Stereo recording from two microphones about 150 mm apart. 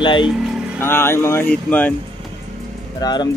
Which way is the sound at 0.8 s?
15° left (ahead or behind).